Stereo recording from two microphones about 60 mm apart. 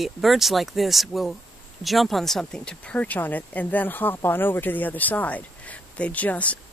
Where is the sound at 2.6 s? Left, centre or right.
Centre.